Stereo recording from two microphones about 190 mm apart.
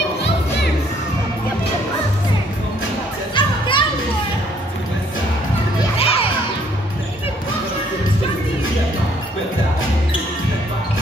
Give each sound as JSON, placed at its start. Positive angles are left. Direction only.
{"t": 3.3, "sound": "children playing", "side_deg": 25}
{"t": 5.9, "sound": "children playing", "side_deg": 30}